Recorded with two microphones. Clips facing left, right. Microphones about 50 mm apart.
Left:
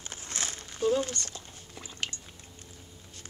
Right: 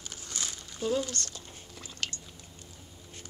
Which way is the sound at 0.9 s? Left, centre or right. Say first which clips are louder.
Left 3 dB; left.